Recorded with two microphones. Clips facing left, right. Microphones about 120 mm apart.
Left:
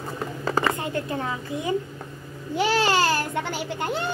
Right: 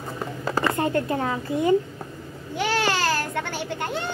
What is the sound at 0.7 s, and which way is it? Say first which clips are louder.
Speech: right 5 dB; 40° right (ahead or behind).